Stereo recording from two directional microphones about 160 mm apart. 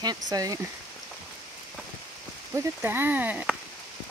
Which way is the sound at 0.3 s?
20° right (ahead or behind).